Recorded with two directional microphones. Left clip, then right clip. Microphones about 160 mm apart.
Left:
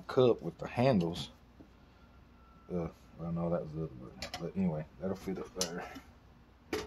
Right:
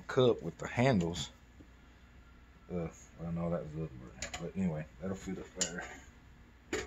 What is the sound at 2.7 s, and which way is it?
Speech, centre (ahead or behind).